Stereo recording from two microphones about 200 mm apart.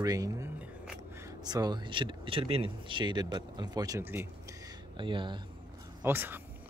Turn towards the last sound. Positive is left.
turn(degrees=-10)  # may be behind; listen again after turning